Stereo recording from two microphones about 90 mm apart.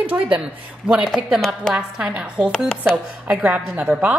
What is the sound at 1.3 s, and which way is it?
Speech, 5° left (ahead or behind).